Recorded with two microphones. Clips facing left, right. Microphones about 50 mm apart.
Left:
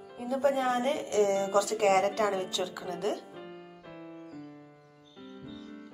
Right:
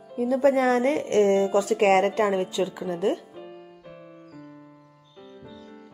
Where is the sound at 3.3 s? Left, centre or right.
Centre.